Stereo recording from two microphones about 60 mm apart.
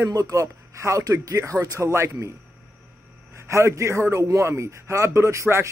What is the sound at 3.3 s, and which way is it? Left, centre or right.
A man's voice, right.